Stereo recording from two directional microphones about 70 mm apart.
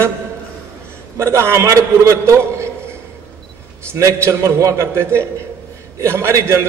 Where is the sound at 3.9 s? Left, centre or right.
Right.